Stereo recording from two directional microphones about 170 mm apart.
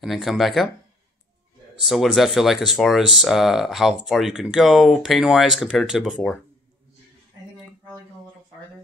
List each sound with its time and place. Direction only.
0.0 s speech: centre (ahead or behind)
1.8 s speech: centre (ahead or behind)